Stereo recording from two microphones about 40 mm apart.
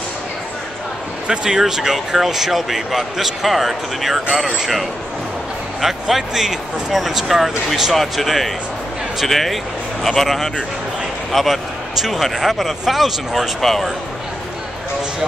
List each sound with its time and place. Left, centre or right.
1.2 s speech: right
1.6 s speech: centre
5.8 s speech: centre